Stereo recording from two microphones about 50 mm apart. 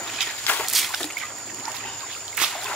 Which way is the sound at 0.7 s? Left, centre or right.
Centre.